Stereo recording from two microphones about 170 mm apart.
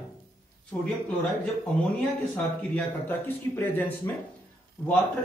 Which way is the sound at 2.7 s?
10° left (ahead or behind).